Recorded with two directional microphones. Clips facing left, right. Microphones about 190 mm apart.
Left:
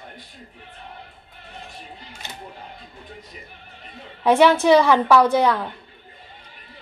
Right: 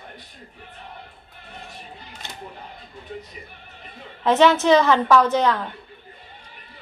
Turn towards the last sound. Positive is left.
turn(degrees=10)  # may be behind; listen again after turning